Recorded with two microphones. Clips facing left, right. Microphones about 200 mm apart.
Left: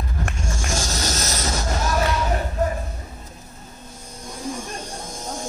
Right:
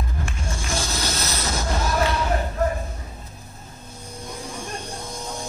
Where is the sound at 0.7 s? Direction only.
45° left (ahead or behind).